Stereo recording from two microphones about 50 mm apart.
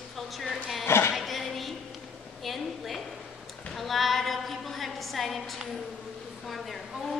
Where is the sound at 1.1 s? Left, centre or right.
Centre.